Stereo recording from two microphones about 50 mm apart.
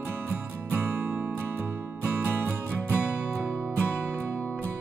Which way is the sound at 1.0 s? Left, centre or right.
Right.